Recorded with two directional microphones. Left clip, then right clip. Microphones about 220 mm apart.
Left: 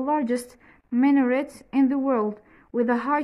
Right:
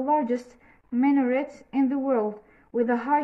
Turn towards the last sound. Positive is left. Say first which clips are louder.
# even
turn(degrees=40)  # may be behind; listen again after turning